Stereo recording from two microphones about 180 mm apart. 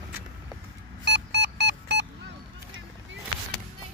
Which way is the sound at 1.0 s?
65° right (ahead or behind).